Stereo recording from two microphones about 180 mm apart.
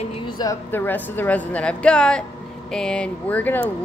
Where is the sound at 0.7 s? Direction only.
10° left (ahead or behind).